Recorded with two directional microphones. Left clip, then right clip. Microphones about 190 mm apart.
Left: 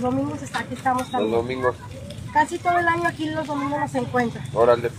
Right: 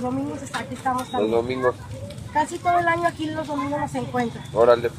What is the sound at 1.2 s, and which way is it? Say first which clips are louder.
Speech: right 1 dB; 20° right (ahead or behind).